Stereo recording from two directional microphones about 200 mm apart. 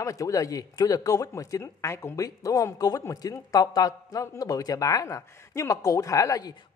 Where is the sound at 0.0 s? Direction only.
15° left (ahead or behind).